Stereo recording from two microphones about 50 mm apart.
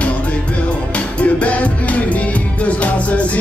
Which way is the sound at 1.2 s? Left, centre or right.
Left.